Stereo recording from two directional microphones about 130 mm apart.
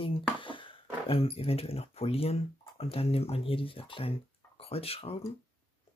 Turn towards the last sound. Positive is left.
turn(degrees=50)  # may be behind; listen again after turning